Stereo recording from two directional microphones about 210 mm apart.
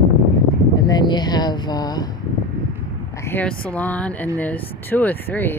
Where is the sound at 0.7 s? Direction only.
20° left (ahead or behind).